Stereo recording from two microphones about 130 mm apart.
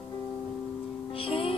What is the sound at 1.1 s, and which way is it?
Music, 45° left (ahead or behind).